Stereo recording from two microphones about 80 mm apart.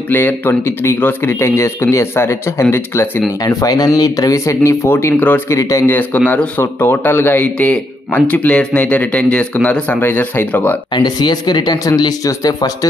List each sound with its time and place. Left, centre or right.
0.1 s speech: left
3.4 s speech: left
5.5 s speech: left
5.9 s speech: centre
11.0 s speech: left